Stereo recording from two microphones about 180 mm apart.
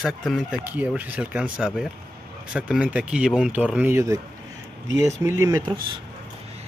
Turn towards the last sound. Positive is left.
turn(degrees=-20)  # may be behind; listen again after turning